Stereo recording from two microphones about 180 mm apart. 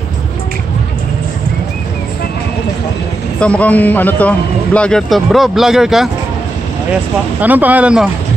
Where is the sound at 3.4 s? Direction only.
5° left (ahead or behind).